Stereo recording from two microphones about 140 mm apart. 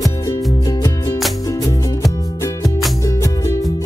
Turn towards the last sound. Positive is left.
turn(degrees=25)  # may be behind; listen again after turning